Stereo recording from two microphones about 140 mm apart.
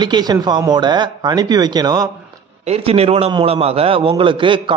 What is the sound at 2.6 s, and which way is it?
A man's voice, 45° right (ahead or behind).